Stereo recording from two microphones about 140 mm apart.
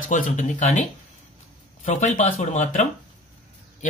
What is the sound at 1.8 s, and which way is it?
Speech, 60° left (ahead or behind).